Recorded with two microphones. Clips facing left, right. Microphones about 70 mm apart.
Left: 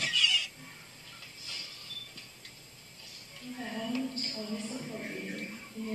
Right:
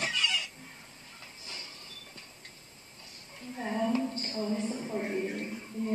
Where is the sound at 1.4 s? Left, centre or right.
Right.